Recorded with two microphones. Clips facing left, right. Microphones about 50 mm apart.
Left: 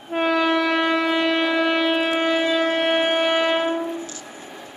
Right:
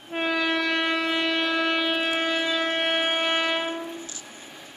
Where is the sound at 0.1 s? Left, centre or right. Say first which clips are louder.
Left 6 dB; centre.